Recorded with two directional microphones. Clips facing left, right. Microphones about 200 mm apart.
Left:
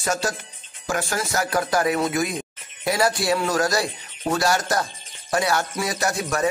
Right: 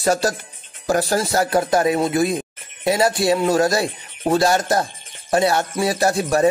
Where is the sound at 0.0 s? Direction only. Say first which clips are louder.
Right 6 dB; 35° right (ahead or behind).